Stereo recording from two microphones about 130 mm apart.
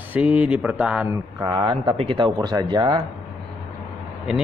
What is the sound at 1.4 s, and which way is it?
Speech, 35° right (ahead or behind).